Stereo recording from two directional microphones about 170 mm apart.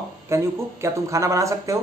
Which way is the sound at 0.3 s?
15° right (ahead or behind).